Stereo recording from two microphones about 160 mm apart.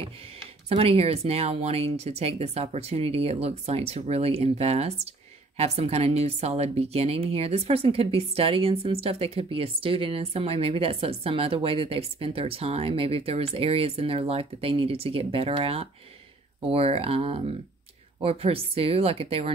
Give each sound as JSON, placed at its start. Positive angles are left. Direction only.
{"t": 0.7, "sound": "a woman's voice", "side_deg": -40}